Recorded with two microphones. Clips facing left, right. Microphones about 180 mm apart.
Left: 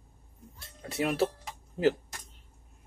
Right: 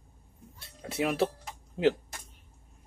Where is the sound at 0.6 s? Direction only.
Centre (ahead or behind).